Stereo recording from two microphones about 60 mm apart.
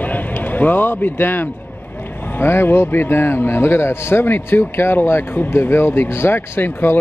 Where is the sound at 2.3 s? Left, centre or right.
Left.